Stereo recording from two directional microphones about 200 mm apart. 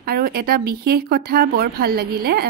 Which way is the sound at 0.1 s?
50° right (ahead or behind).